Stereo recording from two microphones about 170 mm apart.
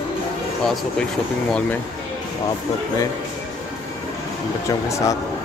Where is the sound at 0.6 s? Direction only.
Centre (ahead or behind).